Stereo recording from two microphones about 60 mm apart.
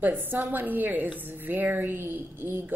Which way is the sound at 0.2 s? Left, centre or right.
Right.